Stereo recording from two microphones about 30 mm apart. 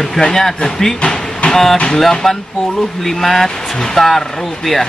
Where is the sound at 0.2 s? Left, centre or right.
Centre.